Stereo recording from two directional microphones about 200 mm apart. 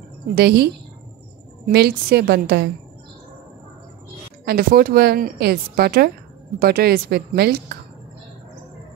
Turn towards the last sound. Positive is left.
turn(degrees=-50)  # may be behind; listen again after turning